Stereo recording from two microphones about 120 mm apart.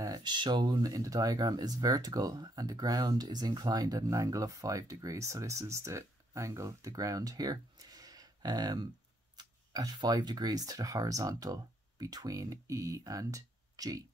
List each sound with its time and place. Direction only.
0.0 s speech: 35° right (ahead or behind)